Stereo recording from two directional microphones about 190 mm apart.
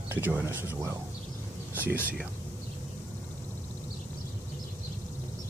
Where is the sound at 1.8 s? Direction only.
10° right (ahead or behind).